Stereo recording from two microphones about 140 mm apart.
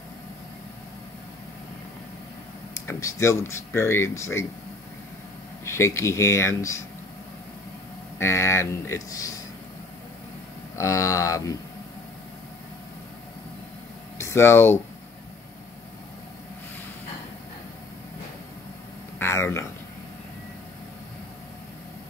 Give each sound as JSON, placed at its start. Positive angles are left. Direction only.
{"t": 2.7, "sound": "speech", "side_deg": 20}
{"t": 5.7, "sound": "speech", "side_deg": 20}
{"t": 8.2, "sound": "speech", "side_deg": 20}
{"t": 10.8, "sound": "speech", "side_deg": 20}
{"t": 14.1, "sound": "speech", "side_deg": 20}
{"t": 19.1, "sound": "a sound", "side_deg": 15}